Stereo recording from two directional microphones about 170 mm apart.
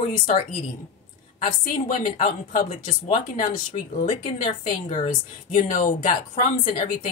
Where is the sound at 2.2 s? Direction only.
45° left (ahead or behind).